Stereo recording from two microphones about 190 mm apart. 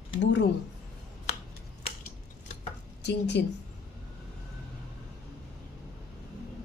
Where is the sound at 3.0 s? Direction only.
65° left (ahead or behind).